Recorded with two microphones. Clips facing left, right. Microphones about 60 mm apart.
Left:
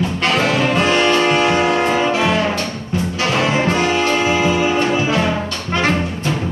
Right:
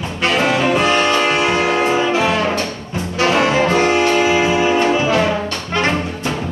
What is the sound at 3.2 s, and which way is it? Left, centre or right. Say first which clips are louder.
Music: right 4 dB; right.